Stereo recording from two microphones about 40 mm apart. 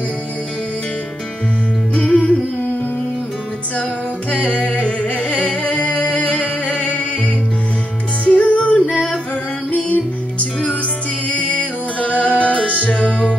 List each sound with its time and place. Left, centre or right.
2.0 s music: left
4.3 s humming: left
8.3 s music: left
11.2 s music: left